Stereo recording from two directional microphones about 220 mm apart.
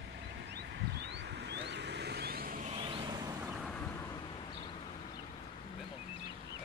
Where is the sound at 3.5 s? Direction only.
Centre (ahead or behind).